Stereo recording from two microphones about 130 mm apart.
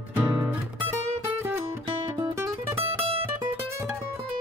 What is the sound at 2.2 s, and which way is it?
Music, 25° right (ahead or behind).